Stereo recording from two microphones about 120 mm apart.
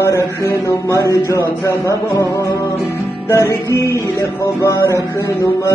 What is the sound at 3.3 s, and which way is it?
Music, 25° left (ahead or behind).